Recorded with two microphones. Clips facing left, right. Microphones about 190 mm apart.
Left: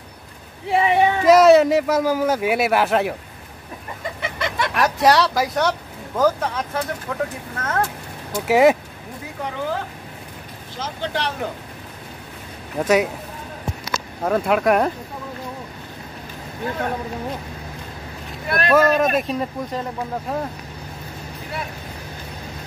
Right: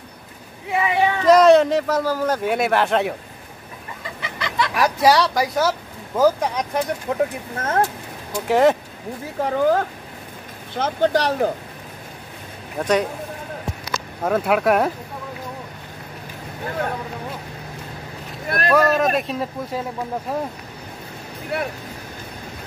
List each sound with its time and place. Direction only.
0.7 s speech: 30° left (ahead or behind)
1.2 s speech: 5° left (ahead or behind)
4.2 s chicken: 50° left (ahead or behind)
4.7 s speech: centre (ahead or behind); by 7.8 s 25° right (ahead or behind)
8.5 s speech: 10° left (ahead or behind)
9.4 s speech: 45° right (ahead or behind)
10.7 s speech: 55° right (ahead or behind)
11.1 s speech: 40° right (ahead or behind)
12.7 s speech: 5° left (ahead or behind)
14.2 s speech: 5° right (ahead or behind)
18.7 s speech: centre (ahead or behind)